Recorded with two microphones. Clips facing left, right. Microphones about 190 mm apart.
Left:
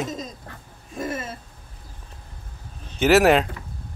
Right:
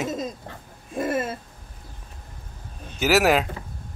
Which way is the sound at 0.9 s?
55° right (ahead or behind).